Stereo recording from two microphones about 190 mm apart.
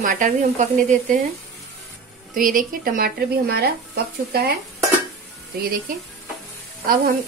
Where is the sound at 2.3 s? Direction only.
45° right (ahead or behind).